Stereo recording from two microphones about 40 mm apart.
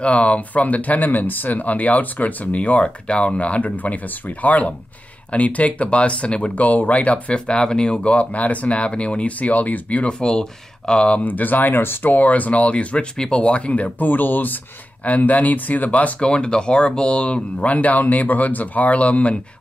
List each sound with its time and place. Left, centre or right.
0.0 s speech: left
6.5 s speech: left
7.3 s speech: left
10.0 s speech: centre
11.2 s speech: left
11.7 s speech: left
12.1 s speech: left
13.9 s speech: left
16.2 s speech: left
17.6 s speech: left